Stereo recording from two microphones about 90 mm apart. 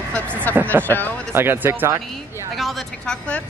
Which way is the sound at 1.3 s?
25° right (ahead or behind).